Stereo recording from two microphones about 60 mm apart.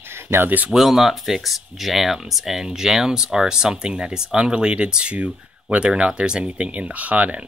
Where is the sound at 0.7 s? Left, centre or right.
Centre.